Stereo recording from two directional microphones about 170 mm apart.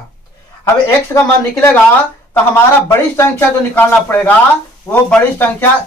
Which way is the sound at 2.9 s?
15° left (ahead or behind).